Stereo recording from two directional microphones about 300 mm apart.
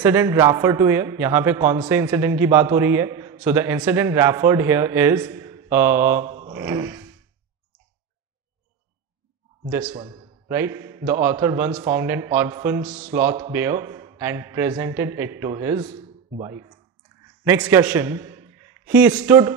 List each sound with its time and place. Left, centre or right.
0.0 s a man's voice: centre
6.4 s a sound: centre
9.7 s speech: centre
9.9 s a man's voice: centre
17.5 s a man's voice: centre